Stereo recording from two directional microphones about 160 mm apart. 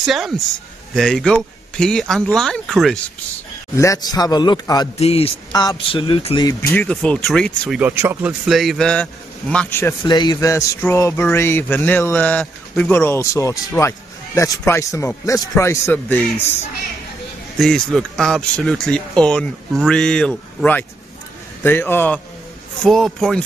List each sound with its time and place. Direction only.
0.0 s speech: centre (ahead or behind)
3.7 s speech: 20° left (ahead or behind)
4.9 s a man's voice: 40° left (ahead or behind)
5.5 s speech: 25° left (ahead or behind)
6.7 s a man's voice: 10° left (ahead or behind)
7.8 s speech: 15° right (ahead or behind); by 9.9 s 15° left (ahead or behind)
10.0 s a man's voice: 25° left (ahead or behind); by 16.4 s 10° left (ahead or behind)
17.6 s a man's voice: centre (ahead or behind)
22.8 s speech: centre (ahead or behind)